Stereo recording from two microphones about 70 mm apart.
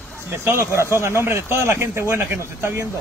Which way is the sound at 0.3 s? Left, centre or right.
Right.